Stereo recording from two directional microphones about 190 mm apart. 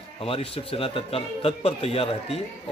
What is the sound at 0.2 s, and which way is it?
A man's voice, 30° left (ahead or behind).